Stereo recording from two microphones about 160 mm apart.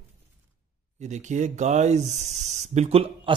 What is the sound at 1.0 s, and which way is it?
Speech, 50° right (ahead or behind).